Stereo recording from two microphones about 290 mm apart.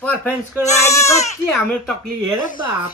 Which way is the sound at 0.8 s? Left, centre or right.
Centre.